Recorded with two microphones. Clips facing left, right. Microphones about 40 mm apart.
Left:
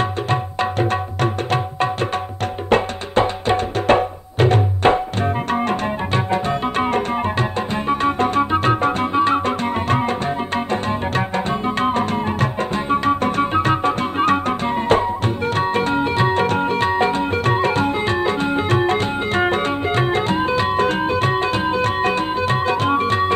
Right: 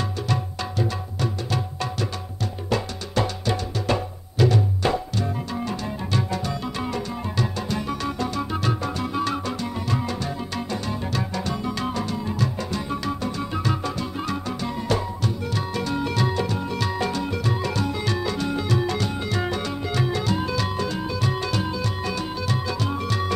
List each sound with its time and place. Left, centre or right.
0.3 s music: left